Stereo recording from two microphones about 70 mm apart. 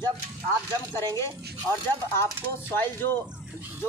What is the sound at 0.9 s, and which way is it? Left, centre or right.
Speech, left.